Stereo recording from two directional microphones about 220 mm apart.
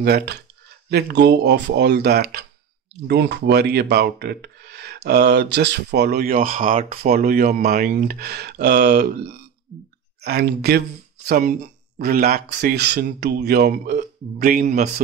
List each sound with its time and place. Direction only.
0.0 s speech: 45° right (ahead or behind)
10.2 s speech: 45° right (ahead or behind)